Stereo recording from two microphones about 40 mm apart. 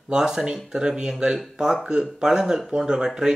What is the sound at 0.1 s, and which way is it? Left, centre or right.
Speech, centre.